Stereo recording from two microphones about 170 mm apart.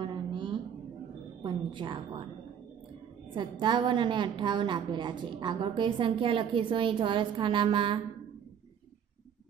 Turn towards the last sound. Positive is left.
turn(degrees=-30)  # may be behind; listen again after turning